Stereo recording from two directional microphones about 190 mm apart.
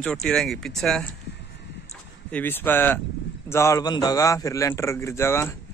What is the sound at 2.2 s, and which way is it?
Speech, 10° left (ahead or behind).